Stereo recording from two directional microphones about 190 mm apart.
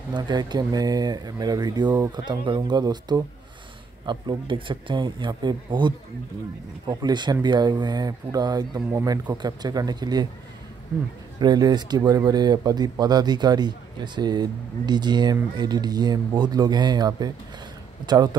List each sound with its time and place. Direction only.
0.1 s speech: 20° right (ahead or behind)
11.3 s speech: 20° right (ahead or behind)